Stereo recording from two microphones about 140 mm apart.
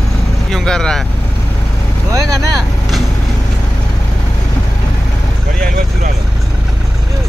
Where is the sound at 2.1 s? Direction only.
25° right (ahead or behind).